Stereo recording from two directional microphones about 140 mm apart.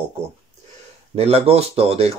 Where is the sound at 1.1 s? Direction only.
45° right (ahead or behind).